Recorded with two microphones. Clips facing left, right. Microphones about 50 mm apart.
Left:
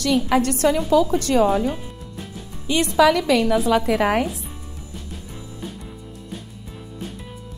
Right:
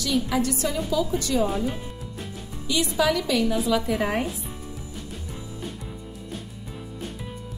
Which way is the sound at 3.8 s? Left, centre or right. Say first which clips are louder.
Left 6 dB; left.